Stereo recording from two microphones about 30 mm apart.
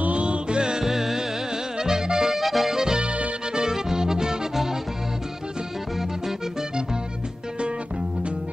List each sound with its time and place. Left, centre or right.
0.0 s music: right
0.8 s music: centre
2.4 s music: centre
2.7 s music: right
3.0 s music: right
3.6 s music: right